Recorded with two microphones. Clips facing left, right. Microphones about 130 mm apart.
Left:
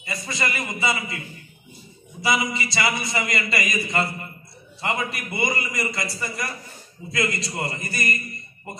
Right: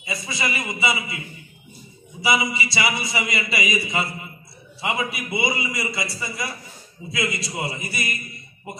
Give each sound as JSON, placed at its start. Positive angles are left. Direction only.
{"t": 0.0, "sound": "a man's voice", "side_deg": -10}
{"t": 2.2, "sound": "a man's voice", "side_deg": -10}